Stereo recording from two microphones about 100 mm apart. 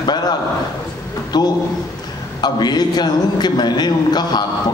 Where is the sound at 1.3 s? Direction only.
45° left (ahead or behind).